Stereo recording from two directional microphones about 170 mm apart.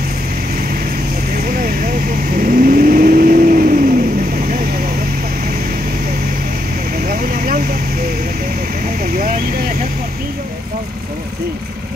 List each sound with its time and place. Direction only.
1.5 s vehicle: 55° right (ahead or behind)
7.1 s vehicle: 55° right (ahead or behind)
9.0 s vehicle: 55° right (ahead or behind)